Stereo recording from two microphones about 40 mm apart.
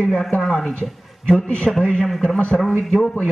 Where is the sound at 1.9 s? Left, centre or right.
Centre.